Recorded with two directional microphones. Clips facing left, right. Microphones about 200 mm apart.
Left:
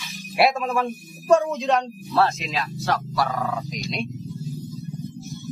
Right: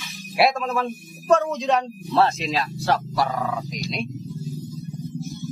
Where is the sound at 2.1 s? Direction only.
30° right (ahead or behind).